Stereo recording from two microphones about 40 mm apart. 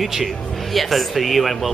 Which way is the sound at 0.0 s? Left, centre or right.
Centre.